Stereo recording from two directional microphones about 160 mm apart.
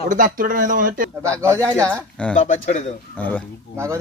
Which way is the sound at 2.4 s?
50° left (ahead or behind).